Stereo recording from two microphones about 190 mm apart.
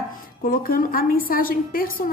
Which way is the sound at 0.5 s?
50° left (ahead or behind).